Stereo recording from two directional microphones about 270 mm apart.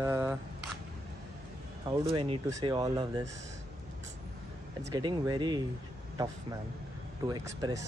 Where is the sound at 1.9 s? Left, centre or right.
Centre.